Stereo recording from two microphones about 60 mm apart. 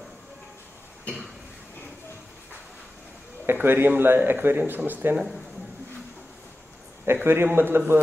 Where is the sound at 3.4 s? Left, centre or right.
Right.